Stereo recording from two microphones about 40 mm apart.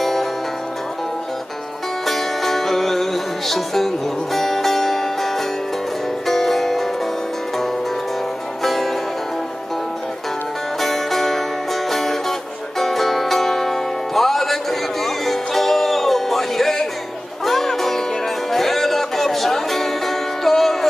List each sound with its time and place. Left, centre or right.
0.0 s music: centre
2.0 s music: centre
10.8 s music: centre